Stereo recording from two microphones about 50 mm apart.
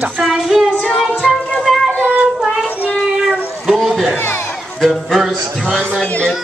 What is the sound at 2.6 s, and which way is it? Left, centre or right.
Child singing, left.